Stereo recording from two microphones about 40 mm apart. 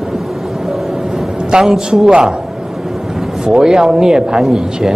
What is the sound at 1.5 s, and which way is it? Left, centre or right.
Speech, centre.